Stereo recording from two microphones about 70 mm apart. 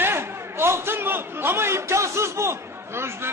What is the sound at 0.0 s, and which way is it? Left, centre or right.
A man's voice, right.